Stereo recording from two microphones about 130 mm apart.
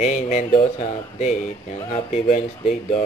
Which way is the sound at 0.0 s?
60° left (ahead or behind).